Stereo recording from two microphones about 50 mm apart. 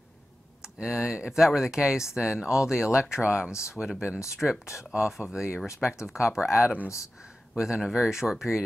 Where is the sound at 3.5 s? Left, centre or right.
Left.